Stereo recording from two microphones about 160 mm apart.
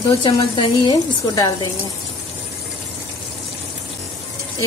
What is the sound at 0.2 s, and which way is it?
A woman's voice, 30° left (ahead or behind).